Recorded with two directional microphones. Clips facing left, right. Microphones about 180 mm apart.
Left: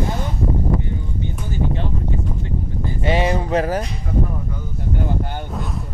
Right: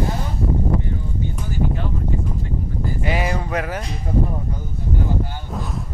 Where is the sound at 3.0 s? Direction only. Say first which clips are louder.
Left 5 dB; 25° left (ahead or behind).